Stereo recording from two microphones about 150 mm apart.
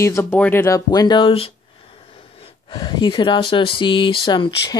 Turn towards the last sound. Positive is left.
turn(degrees=30)  # may be behind; listen again after turning